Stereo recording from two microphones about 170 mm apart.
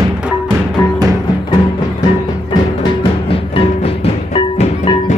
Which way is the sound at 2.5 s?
25° left (ahead or behind).